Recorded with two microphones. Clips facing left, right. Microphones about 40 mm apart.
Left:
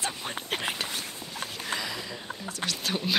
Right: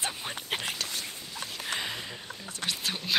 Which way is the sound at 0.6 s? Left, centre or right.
Centre.